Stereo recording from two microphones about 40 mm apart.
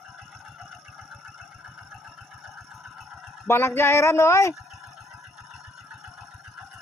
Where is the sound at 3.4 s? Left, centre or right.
Left.